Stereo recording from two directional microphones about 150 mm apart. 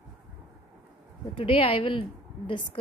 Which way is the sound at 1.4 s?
35° left (ahead or behind).